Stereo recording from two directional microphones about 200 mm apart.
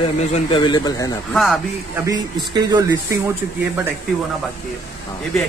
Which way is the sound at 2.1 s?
20° right (ahead or behind).